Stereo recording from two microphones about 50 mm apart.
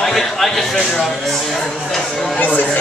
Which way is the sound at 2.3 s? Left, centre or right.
Left.